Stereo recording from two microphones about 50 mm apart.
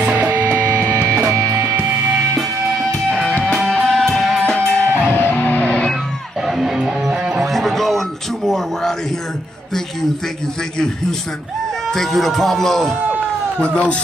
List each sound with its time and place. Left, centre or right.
0.0 s music: right
1.1 s music: right
3.1 s music: centre
4.4 s music: centre
5.0 s music: left
6.4 s music: centre
7.3 s music: centre
8.5 s a sound: centre
11.9 s speech: centre
13.6 s speech: left